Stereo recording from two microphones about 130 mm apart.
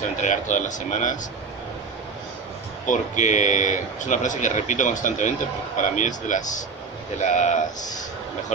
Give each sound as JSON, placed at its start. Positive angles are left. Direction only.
{"t": 0.2, "sound": "speech", "side_deg": 75}
{"t": 2.9, "sound": "speech", "side_deg": 70}
{"t": 7.2, "sound": "speech", "side_deg": 65}